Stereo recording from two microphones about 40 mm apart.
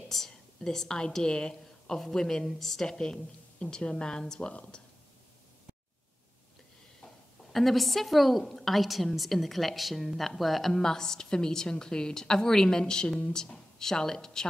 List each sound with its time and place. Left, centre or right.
0.1 s a woman's voice: centre
1.6 s a woman's voice: centre
3.5 s a woman's voice: left
4.5 s a woman's voice: left
7.5 s a woman's voice: centre